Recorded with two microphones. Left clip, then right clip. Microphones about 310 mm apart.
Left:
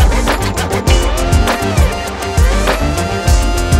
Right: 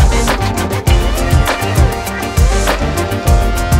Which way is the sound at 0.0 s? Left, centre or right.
Centre.